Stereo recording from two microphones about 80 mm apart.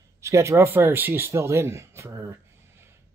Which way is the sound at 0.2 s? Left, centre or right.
Right.